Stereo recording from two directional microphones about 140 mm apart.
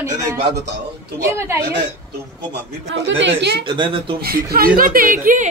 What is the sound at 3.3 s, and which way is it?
Speech, 35° right (ahead or behind).